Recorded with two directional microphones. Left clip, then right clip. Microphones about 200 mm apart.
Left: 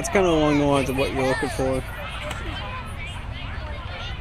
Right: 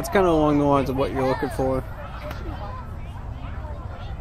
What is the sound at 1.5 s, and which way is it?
Speech, centre (ahead or behind).